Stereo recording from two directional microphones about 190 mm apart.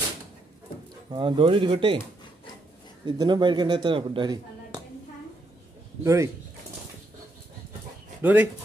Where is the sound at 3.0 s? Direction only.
20° right (ahead or behind).